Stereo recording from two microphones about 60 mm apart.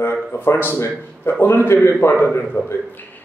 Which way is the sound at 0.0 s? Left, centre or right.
Left.